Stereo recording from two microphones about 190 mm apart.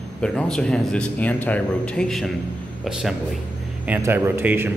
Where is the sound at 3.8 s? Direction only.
10° right (ahead or behind).